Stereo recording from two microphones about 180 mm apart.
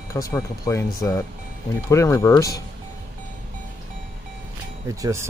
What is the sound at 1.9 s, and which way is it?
Speech, 15° left (ahead or behind).